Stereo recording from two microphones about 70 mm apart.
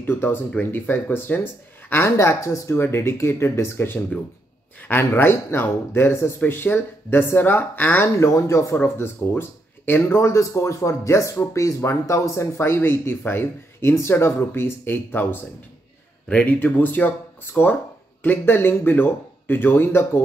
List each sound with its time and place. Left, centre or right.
0.0 s speech: left
8.2 s speech: left
10.1 s speech: left
16.3 s speech: left